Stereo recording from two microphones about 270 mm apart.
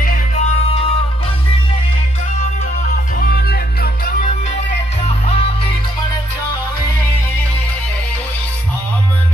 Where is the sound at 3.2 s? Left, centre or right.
Left.